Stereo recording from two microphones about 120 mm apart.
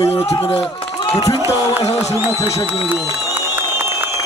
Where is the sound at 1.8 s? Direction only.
65° left (ahead or behind).